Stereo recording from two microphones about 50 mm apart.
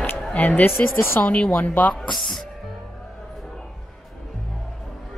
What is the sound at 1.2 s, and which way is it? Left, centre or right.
Speech, left.